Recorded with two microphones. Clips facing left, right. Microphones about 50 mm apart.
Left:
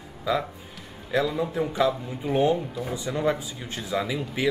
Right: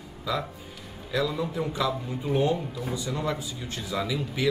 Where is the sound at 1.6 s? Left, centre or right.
Centre.